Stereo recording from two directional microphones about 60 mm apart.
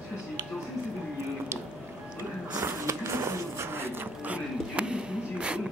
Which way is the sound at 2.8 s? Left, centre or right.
Right.